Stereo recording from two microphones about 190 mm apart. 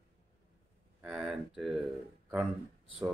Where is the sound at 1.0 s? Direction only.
5° right (ahead or behind).